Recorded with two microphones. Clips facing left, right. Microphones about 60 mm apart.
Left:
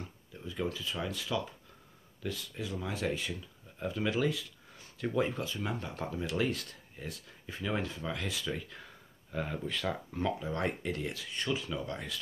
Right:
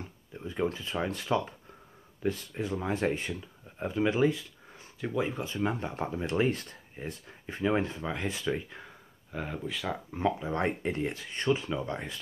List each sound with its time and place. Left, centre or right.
0.3 s speech: right
5.0 s speech: centre
5.4 s speech: right
9.3 s speech: centre
10.2 s speech: right